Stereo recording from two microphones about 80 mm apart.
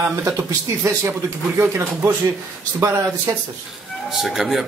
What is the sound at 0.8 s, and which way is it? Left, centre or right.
Speech, right.